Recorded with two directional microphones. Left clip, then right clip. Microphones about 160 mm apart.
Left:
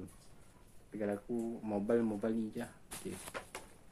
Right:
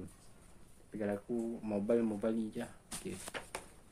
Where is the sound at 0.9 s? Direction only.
5° right (ahead or behind).